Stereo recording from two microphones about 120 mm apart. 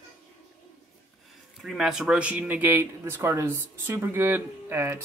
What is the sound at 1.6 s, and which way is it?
A man's voice, centre (ahead or behind).